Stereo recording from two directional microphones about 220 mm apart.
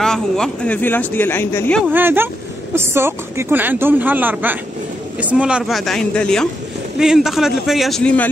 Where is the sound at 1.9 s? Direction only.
10° right (ahead or behind).